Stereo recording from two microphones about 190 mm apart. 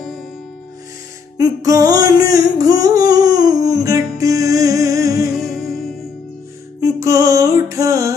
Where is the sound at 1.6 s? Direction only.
15° right (ahead or behind).